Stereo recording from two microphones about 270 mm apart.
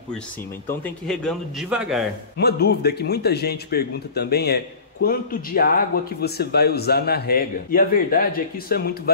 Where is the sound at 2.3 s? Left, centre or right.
Left.